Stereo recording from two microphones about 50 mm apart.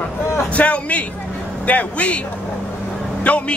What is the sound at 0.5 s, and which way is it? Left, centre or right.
A man's voice, left.